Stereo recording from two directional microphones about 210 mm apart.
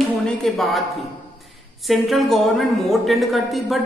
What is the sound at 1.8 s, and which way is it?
A woman's voice, centre (ahead or behind).